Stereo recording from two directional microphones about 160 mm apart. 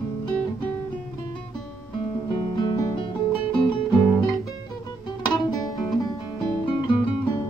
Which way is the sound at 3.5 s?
30° left (ahead or behind).